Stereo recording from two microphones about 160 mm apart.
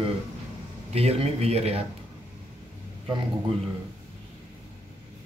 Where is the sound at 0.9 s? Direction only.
40° right (ahead or behind).